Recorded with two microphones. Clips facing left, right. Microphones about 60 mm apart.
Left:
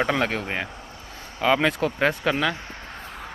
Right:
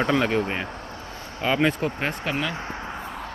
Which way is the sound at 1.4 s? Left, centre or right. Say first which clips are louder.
Left 2 dB; left.